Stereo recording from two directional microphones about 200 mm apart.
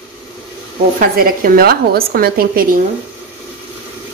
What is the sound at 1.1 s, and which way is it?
A woman's voice, 45° right (ahead or behind).